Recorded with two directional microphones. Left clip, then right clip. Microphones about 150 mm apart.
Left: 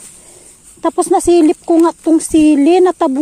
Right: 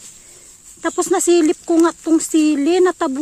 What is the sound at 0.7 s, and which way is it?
Speech, 10° left (ahead or behind).